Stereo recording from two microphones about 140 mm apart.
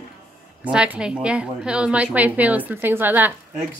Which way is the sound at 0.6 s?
10° right (ahead or behind).